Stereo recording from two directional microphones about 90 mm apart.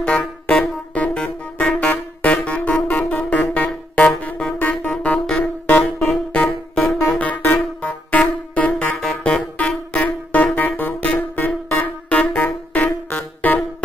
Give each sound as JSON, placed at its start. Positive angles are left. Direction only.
{"t": 0.0, "sound": "music", "side_deg": 10}